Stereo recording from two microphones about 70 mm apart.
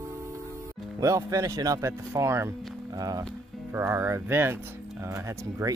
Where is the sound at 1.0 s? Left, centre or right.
Right.